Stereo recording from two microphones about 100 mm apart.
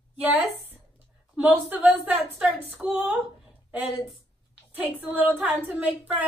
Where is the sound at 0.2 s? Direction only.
20° right (ahead or behind).